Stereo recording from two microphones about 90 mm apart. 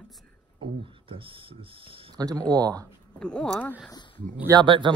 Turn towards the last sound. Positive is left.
turn(degrees=-60)  # may be behind; listen again after turning